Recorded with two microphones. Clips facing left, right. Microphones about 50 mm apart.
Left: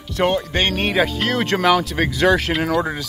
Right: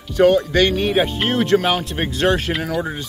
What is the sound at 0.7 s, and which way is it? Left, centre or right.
Speech, left.